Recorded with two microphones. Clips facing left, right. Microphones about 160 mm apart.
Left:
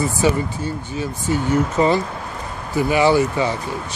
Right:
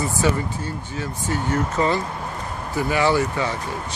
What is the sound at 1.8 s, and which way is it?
Speech, 25° left (ahead or behind).